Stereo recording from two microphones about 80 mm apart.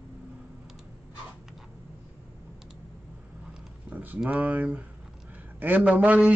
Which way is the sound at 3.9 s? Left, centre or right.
Right.